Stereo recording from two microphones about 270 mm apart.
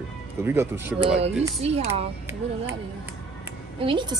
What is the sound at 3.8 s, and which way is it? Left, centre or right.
Speech, centre.